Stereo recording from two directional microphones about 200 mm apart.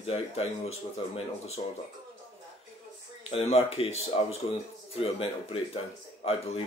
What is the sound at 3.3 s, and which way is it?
Speech, 30° left (ahead or behind).